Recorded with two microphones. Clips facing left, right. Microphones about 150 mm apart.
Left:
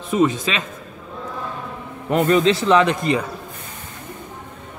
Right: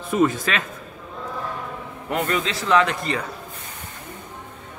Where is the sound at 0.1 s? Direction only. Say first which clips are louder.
Left 2 dB; 20° left (ahead or behind).